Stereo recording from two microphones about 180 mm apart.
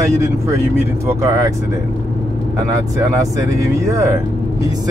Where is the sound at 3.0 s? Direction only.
20° right (ahead or behind).